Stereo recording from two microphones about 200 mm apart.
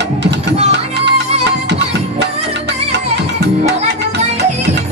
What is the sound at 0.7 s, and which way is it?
Music, 60° right (ahead or behind).